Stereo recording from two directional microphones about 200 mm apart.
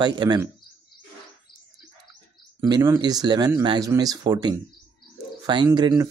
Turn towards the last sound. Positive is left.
turn(degrees=-20)  # may be behind; listen again after turning